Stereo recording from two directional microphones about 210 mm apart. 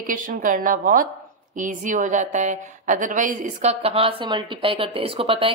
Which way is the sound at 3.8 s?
25° right (ahead or behind).